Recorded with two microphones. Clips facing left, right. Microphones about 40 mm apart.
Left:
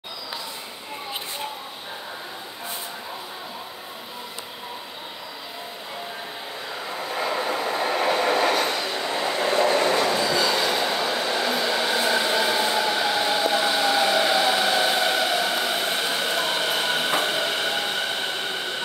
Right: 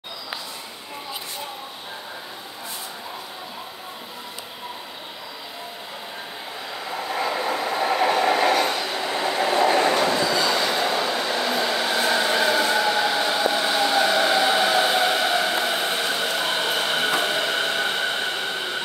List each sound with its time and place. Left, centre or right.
6.9 s train: centre
9.8 s train: centre
10.0 s bow-wow: centre
10.9 s train: centre
12.4 s train: centre